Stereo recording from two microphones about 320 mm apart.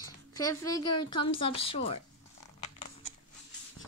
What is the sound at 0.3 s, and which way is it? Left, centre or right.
A child's voice, centre.